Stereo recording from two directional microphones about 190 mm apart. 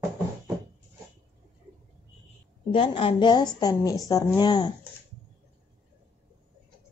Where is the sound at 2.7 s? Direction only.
30° left (ahead or behind).